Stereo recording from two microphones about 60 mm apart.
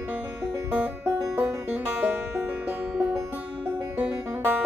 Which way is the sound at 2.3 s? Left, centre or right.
Right.